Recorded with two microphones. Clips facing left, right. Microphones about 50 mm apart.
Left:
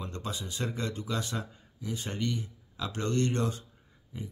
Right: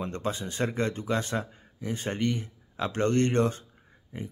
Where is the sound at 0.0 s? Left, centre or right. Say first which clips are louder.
Right 6 dB; right.